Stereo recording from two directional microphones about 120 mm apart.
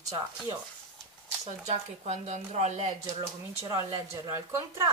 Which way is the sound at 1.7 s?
75° right (ahead or behind).